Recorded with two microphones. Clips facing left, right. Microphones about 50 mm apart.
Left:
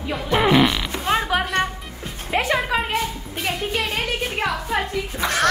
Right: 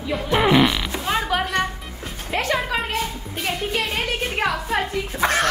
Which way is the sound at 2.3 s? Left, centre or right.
Centre.